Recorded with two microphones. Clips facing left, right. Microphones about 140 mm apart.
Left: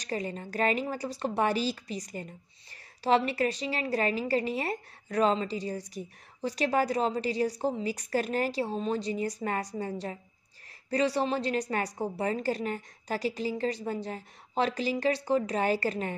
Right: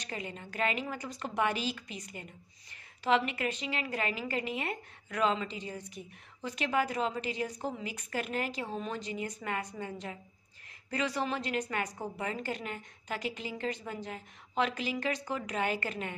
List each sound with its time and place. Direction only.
0.0 s a woman's voice: 40° left (ahead or behind)